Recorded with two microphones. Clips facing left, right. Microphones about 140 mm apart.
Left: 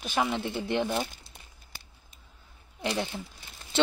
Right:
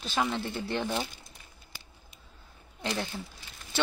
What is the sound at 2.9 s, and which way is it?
Speech, 20° left (ahead or behind).